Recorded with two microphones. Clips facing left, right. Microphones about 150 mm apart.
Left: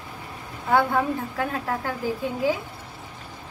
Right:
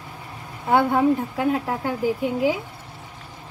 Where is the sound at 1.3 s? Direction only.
20° right (ahead or behind).